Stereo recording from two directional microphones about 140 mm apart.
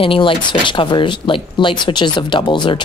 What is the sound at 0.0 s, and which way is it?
Speech, 40° left (ahead or behind).